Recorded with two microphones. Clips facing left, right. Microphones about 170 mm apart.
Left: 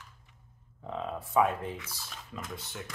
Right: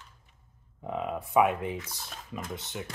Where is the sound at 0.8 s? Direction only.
10° right (ahead or behind).